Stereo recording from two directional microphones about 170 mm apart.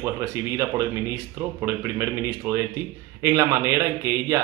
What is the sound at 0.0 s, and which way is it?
Speech, 15° right (ahead or behind).